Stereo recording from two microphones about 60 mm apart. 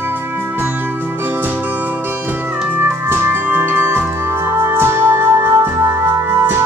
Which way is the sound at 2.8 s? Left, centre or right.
Right.